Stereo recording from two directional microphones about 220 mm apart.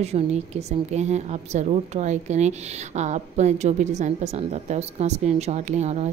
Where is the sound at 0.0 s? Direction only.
30° right (ahead or behind).